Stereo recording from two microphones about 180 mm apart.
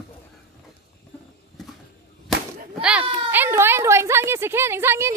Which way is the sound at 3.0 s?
30° right (ahead or behind).